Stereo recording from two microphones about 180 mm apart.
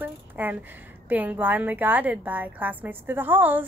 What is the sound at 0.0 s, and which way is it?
A woman's voice, 10° right (ahead or behind).